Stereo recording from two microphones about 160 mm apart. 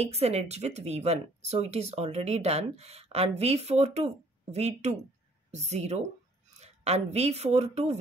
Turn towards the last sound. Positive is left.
turn(degrees=-40)  # may be behind; listen again after turning